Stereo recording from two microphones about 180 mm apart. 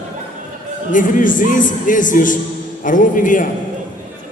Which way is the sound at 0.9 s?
45° left (ahead or behind).